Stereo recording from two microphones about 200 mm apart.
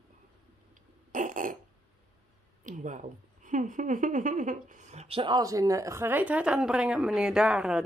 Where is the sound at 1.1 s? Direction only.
40° right (ahead or behind).